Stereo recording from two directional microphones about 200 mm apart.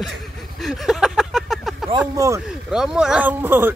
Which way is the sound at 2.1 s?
15° right (ahead or behind).